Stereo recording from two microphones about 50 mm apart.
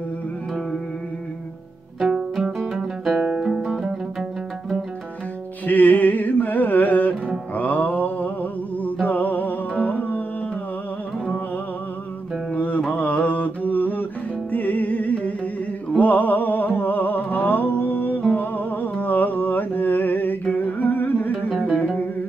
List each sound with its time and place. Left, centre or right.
2.0 s music: centre
3.2 s guitar: centre
5.7 s music: left
7.5 s mantra: left
9.0 s music: left
12.5 s music: left
12.8 s mantra: left
14.5 s music: left
21.5 s music: right